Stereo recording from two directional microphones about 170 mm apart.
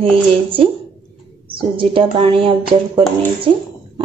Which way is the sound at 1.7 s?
30° right (ahead or behind).